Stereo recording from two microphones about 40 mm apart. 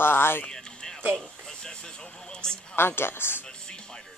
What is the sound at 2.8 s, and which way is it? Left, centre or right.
Speech, left.